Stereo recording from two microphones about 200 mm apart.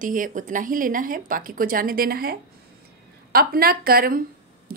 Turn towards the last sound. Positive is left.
turn(degrees=-45)  # may be behind; listen again after turning